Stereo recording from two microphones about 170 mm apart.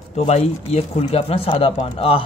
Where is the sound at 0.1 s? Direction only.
40° left (ahead or behind).